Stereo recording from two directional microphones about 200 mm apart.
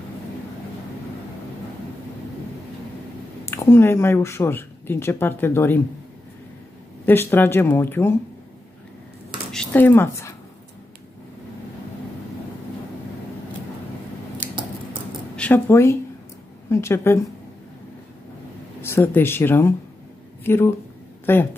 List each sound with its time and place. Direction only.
3.4 s speech: 10° left (ahead or behind)
7.1 s speech: 10° left (ahead or behind)
9.5 s a sound: 5° left (ahead or behind)
15.3 s speech: 10° left (ahead or behind)
18.8 s speech: 10° left (ahead or behind)